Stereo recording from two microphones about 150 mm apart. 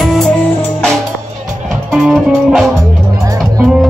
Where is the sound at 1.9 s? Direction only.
Centre (ahead or behind).